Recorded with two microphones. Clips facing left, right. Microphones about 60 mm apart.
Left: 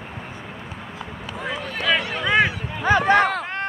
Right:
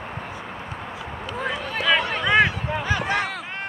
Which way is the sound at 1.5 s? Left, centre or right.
Centre.